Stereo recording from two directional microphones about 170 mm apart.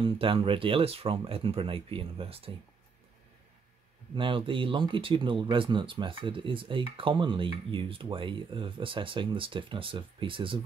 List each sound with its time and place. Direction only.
0.0 s speech: 30° right (ahead or behind)
4.1 s speech: 30° right (ahead or behind)